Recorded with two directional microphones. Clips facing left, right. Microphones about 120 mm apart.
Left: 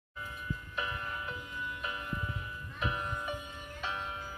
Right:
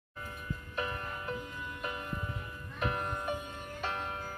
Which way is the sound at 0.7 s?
40° right (ahead or behind).